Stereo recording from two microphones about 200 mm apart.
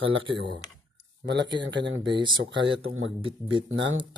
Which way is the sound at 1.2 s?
65° right (ahead or behind).